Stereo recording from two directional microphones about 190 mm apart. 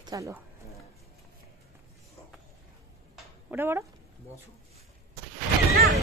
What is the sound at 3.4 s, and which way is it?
Speech, 10° right (ahead or behind).